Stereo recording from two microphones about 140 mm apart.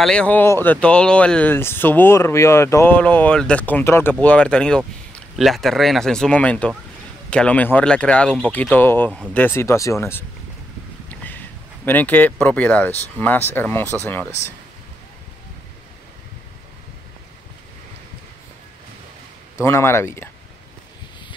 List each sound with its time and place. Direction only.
0.0 s speech: 5° left (ahead or behind)
19.6 s speech: 20° left (ahead or behind)